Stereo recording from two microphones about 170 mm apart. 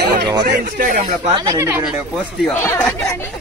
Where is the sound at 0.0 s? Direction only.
75° right (ahead or behind).